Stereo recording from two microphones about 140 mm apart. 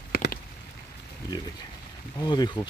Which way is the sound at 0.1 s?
90° left.